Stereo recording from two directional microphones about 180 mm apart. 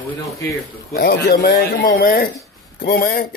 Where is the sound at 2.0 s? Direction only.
45° left (ahead or behind).